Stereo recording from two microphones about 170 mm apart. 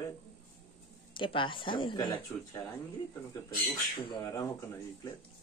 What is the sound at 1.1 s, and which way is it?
A woman's voice, 30° left (ahead or behind).